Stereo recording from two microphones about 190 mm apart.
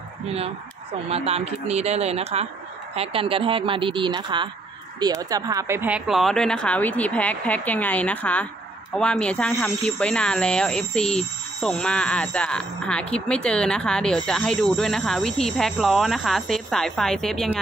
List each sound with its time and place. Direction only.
1.0 s a woman's voice: 30° right (ahead or behind); by 17.6 s centre (ahead or behind)